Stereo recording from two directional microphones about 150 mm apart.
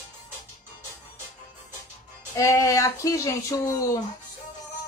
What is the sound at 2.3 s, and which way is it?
Speech, 20° left (ahead or behind).